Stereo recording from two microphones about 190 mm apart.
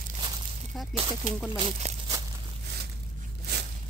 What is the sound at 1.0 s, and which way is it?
Speech, 30° right (ahead or behind).